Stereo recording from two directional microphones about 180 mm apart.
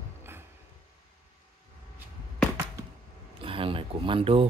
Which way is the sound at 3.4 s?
30° right (ahead or behind).